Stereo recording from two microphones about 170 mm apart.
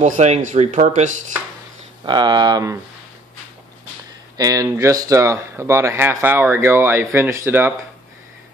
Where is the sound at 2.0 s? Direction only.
25° right (ahead or behind).